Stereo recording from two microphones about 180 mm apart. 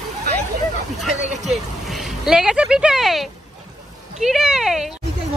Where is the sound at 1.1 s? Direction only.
40° right (ahead or behind).